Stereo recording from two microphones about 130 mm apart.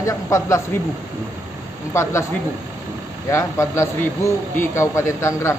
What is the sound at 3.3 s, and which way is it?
A man's voice, 20° left (ahead or behind).